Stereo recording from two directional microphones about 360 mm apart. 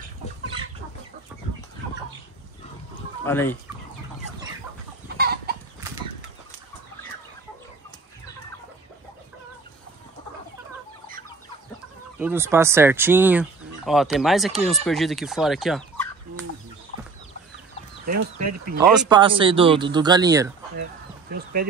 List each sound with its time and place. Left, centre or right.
2.9 s a sound: centre
5.1 s chicken: right
12.2 s speech: centre
18.1 s speech: right
18.8 s speech: centre
19.0 s speech: centre
21.3 s speech: right